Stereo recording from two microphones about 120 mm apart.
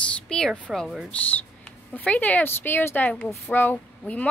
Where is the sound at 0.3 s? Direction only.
5° left (ahead or behind).